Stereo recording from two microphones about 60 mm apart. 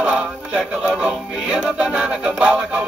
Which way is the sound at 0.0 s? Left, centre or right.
Centre.